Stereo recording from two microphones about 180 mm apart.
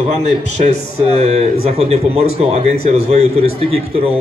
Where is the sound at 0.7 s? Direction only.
35° right (ahead or behind).